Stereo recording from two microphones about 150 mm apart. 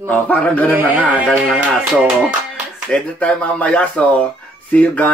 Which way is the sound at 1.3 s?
5° right (ahead or behind).